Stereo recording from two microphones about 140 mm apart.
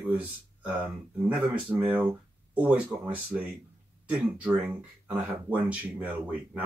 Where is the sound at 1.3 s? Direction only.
10° right (ahead or behind).